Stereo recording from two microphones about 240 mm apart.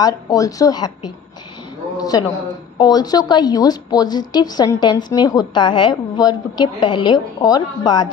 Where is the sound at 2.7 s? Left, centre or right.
Centre.